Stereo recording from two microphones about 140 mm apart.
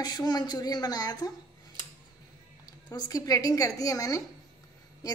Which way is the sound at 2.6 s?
30° left (ahead or behind).